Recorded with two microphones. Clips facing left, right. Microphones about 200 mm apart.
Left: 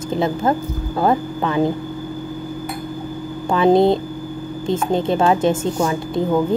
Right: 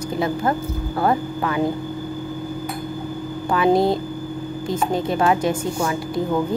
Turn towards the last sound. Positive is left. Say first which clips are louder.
# left 3 dB
turn(degrees=25)  # may be behind; listen again after turning